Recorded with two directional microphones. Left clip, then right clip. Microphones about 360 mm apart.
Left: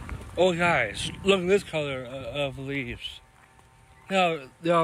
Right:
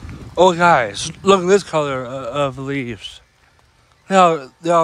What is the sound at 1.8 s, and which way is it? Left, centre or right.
Speech, right.